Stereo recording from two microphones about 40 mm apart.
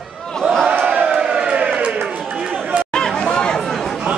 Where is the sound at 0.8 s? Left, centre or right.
Right.